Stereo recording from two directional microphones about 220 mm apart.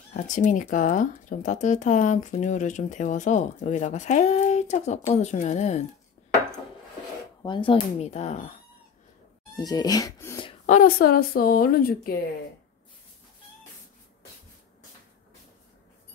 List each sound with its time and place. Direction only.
0.1 s speech: 35° left (ahead or behind)
7.4 s speech: 20° left (ahead or behind)
9.6 s speech: 15° left (ahead or behind)
10.7 s speech: 40° left (ahead or behind)